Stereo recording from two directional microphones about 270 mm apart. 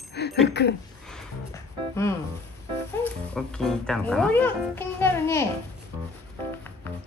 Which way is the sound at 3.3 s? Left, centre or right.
Centre.